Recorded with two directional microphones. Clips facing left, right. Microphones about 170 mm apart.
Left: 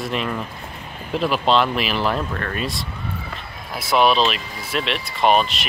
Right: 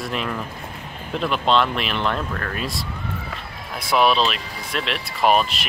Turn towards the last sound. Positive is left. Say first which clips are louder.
# left 1 dB
turn(degrees=0)  # may be behind; listen again after turning